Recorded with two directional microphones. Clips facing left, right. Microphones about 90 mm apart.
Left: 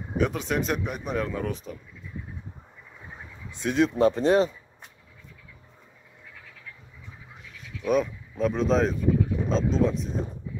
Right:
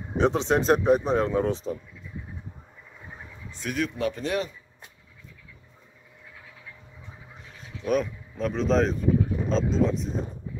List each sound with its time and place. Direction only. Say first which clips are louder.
0.2 s speech: right 4 dB; 30° right (ahead or behind)
3.4 s speech: left 6 dB; 20° left (ahead or behind)
7.4 s a sound: even; 35° right (ahead or behind)
7.8 s speech: left 1 dB; centre (ahead or behind)